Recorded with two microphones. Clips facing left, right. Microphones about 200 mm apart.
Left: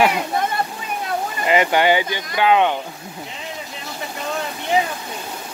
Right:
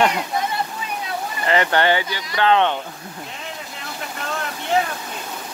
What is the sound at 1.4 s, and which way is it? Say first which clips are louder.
Speech: left 2 dB; 15° left (ahead or behind).